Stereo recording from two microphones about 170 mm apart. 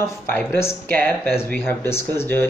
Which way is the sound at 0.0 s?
15° left (ahead or behind).